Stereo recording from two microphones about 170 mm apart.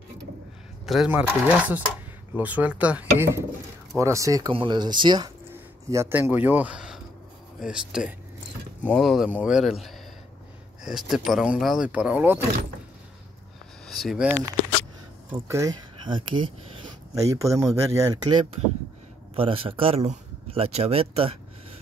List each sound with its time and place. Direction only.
0.8 s speech: 5° right (ahead or behind); by 5.3 s 25° right (ahead or behind)
5.5 s speech: 15° right (ahead or behind)
13.8 s a sound: centre (ahead or behind)
15.3 s speech: 20° right (ahead or behind)
17.2 s speech: 20° right (ahead or behind)
19.3 s a man's voice: 30° right (ahead or behind)